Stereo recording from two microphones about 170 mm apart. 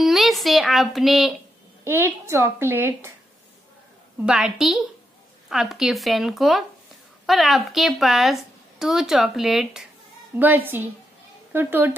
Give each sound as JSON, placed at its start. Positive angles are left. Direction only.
{"t": 0.0, "sound": "a woman's voice", "side_deg": 0}
{"t": 1.9, "sound": "a woman's voice", "side_deg": -15}
{"t": 4.3, "sound": "a woman's voice", "side_deg": -5}